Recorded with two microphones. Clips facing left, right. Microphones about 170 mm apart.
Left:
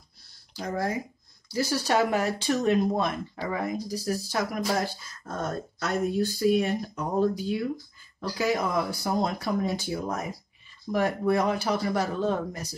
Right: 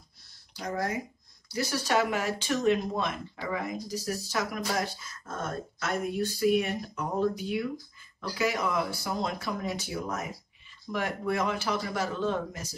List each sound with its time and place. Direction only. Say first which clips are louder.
0.6 s speech: left 2 dB; 30° left (ahead or behind)